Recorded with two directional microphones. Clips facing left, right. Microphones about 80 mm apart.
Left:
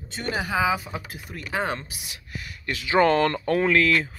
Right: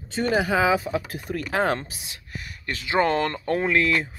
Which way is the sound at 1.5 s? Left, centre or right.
Right.